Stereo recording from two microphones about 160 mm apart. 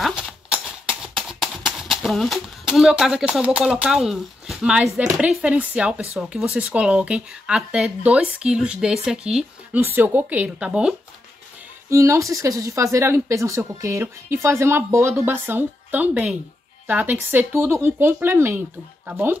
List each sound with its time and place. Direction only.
0.0 s horse: centre (ahead or behind)
5.1 s speech: 5° right (ahead or behind)
11.9 s speech: 20° right (ahead or behind)